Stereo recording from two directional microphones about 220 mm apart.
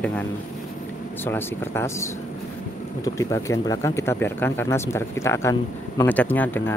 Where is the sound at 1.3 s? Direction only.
10° left (ahead or behind).